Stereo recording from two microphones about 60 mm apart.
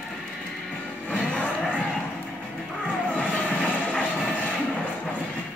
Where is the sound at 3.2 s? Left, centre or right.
Left.